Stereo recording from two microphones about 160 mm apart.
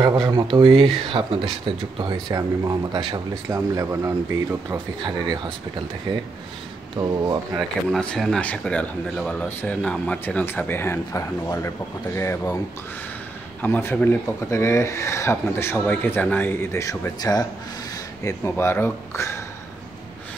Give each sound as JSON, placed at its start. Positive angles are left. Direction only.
{"t": 0.0, "sound": "speech", "side_deg": -25}
{"t": 7.0, "sound": "speech", "side_deg": -20}
{"t": 7.5, "sound": "speech", "side_deg": 5}
{"t": 13.6, "sound": "speech", "side_deg": 15}